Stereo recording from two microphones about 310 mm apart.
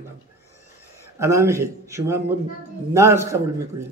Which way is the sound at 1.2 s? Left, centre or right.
Centre.